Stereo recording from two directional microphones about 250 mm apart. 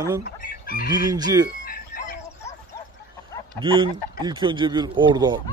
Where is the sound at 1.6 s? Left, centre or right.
Left.